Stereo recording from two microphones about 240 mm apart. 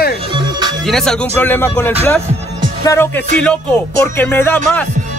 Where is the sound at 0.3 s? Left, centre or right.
Centre.